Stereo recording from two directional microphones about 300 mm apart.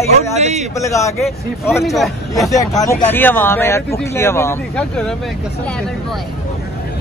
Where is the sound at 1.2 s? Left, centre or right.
Centre.